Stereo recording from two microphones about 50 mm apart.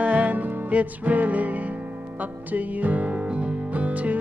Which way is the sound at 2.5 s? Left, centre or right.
Right.